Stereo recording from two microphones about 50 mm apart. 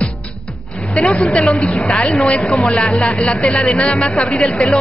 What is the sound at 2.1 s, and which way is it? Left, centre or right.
Speech, left.